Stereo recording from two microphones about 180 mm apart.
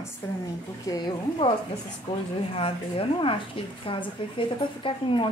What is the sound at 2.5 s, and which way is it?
A woman's voice, 30° left (ahead or behind).